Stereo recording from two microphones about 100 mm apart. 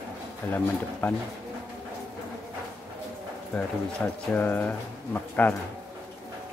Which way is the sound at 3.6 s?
15° left (ahead or behind).